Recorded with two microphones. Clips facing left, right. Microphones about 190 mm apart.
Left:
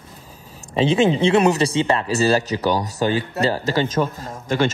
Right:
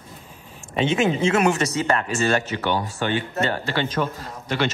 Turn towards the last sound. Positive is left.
turn(degrees=45)  # may be behind; listen again after turning